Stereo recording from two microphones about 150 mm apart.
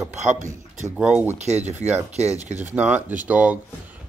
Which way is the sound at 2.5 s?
10° right (ahead or behind).